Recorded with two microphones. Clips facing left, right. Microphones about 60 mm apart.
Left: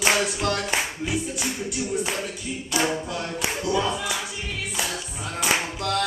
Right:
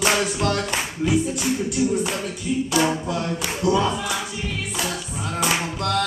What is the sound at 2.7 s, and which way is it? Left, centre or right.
Singing, centre.